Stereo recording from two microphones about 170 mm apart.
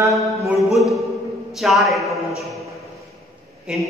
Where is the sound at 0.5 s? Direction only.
Centre (ahead or behind).